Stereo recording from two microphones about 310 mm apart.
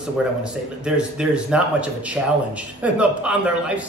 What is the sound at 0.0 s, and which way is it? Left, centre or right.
Speech, centre.